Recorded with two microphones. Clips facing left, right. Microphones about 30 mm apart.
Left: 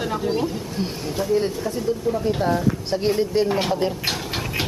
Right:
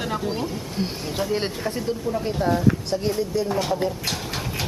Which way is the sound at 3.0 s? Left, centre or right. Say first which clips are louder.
Left 5 dB; left.